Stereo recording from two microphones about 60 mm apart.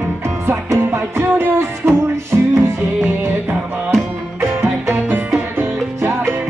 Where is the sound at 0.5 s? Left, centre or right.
Right.